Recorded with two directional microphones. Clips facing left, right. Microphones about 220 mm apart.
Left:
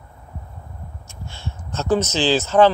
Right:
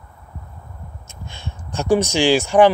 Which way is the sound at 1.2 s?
15° right (ahead or behind).